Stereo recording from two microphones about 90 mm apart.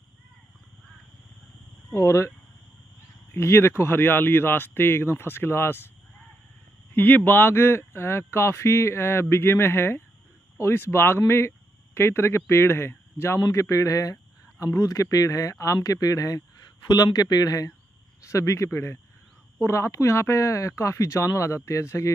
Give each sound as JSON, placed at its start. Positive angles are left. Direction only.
{"t": 2.0, "sound": "speech", "side_deg": 35}
{"t": 6.9, "sound": "speech", "side_deg": 20}